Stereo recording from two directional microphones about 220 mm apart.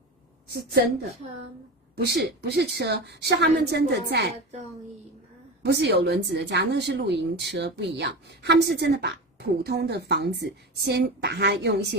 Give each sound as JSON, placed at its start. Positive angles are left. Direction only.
{"t": 0.5, "sound": "speech", "side_deg": -45}
{"t": 2.0, "sound": "speech", "side_deg": -45}
{"t": 5.6, "sound": "speech", "side_deg": -50}